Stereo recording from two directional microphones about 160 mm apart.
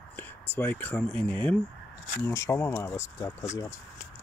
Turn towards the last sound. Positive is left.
turn(degrees=15)  # may be behind; listen again after turning